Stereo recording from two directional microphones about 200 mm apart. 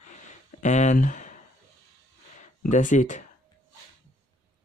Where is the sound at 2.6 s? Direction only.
40° left (ahead or behind).